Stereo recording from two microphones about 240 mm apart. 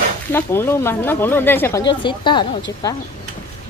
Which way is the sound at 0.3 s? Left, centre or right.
Centre.